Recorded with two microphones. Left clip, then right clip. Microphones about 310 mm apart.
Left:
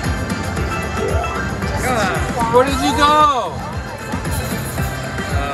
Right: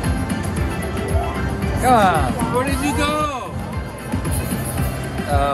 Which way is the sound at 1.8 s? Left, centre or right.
Centre.